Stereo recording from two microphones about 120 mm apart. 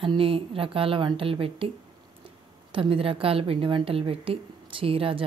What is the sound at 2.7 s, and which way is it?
A woman's voice, 50° right (ahead or behind).